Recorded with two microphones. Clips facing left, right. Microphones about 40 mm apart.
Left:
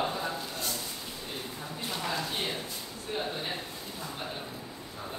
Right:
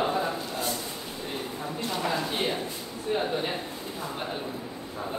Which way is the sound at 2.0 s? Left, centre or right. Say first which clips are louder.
Right 4 dB; centre.